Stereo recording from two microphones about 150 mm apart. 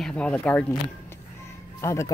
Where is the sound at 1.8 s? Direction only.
20° left (ahead or behind).